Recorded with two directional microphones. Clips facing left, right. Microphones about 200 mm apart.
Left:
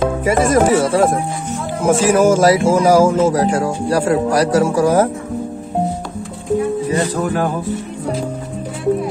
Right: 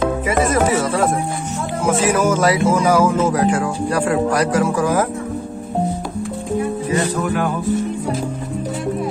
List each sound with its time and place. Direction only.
0.2 s speech: 45° left (ahead or behind)
1.8 s speech: 50° left (ahead or behind)
2.6 s speech: 30° left (ahead or behind)
3.3 s speech: 40° left (ahead or behind)
6.9 s speech: 35° left (ahead or behind)